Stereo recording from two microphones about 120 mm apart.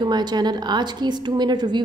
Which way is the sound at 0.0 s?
35° right (ahead or behind).